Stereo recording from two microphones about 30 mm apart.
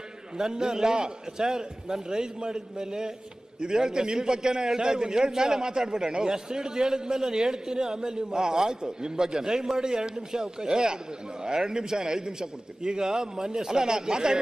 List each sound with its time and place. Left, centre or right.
0.4 s a man's voice: right